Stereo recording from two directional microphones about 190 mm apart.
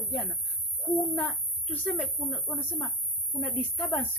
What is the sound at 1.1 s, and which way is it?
A woman's voice, 10° left (ahead or behind).